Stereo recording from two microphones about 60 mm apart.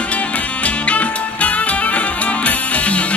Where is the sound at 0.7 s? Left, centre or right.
Left.